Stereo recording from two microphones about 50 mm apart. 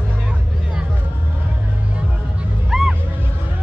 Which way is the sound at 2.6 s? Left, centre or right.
Centre.